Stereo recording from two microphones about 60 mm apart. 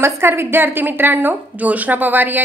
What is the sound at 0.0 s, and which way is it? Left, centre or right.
A woman's voice, right.